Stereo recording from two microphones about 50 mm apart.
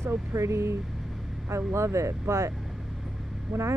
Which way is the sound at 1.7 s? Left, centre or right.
Right.